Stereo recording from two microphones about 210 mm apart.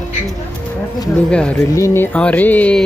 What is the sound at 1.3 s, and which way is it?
Speech, 5° left (ahead or behind).